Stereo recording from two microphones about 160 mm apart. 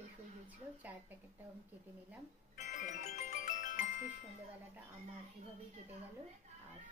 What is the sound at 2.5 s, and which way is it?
Music, 50° left (ahead or behind).